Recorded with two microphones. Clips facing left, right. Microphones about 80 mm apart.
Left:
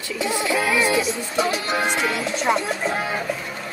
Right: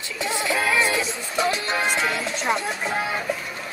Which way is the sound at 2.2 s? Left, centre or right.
Left.